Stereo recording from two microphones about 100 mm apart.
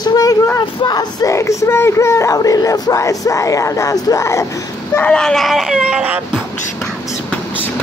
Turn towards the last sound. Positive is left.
turn(degrees=-10)  # may be behind; listen again after turning